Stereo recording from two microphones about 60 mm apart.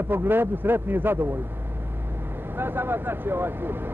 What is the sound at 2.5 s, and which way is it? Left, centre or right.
A man's voice, right.